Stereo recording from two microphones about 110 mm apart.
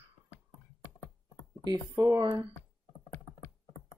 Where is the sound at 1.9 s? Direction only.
30° right (ahead or behind).